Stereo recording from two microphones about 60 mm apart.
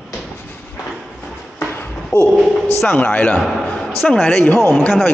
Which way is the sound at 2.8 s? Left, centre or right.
Left.